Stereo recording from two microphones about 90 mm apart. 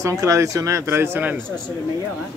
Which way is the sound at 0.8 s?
25° right (ahead or behind).